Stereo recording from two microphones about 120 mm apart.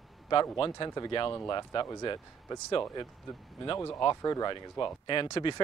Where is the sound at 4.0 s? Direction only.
30° left (ahead or behind).